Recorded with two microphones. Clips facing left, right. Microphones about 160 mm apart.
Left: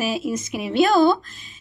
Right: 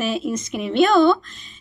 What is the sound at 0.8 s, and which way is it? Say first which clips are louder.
Speech: right 1 dB; 40° left (ahead or behind).